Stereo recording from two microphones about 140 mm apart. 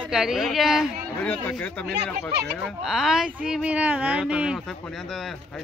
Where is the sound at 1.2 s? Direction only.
10° left (ahead or behind).